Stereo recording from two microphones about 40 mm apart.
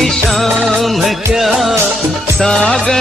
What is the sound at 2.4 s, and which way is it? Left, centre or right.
Music, centre.